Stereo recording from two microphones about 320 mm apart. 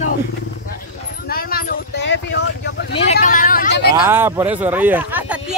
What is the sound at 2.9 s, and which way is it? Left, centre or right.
Vehicle, centre.